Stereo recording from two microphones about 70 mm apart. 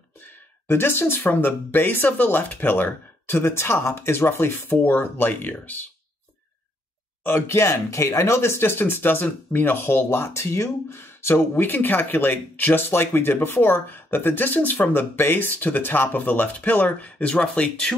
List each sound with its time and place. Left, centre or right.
0.2 s speech: left
7.2 s speech: left; by 17.9 s centre